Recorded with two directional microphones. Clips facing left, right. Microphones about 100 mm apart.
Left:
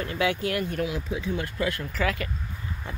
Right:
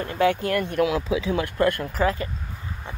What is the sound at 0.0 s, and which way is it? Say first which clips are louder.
Speech: right 4 dB; 50° right (ahead or behind).